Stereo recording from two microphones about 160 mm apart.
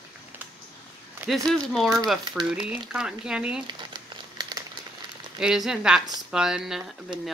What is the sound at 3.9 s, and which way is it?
Crumpling, 25° right (ahead or behind).